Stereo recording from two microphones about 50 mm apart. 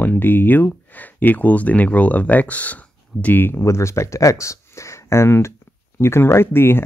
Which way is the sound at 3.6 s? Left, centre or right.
Left.